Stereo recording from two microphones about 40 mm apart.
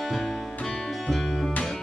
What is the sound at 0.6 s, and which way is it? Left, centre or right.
Music, centre.